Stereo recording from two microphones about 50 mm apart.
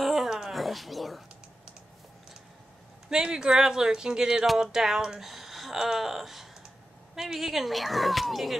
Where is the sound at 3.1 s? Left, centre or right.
Centre.